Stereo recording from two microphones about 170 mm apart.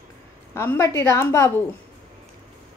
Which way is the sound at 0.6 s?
15° left (ahead or behind).